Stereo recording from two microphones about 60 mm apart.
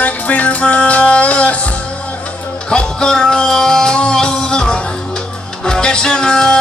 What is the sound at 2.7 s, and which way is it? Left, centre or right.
Music, centre.